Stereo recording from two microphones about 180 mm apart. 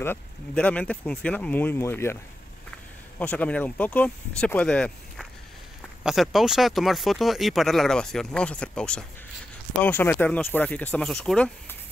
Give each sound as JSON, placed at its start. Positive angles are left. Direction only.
{"t": 0.0, "sound": "speech", "side_deg": 10}
{"t": 3.2, "sound": "speech", "side_deg": 10}